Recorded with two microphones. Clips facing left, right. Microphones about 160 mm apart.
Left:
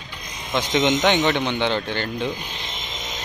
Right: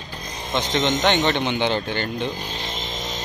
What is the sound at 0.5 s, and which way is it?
Speech, 10° left (ahead or behind).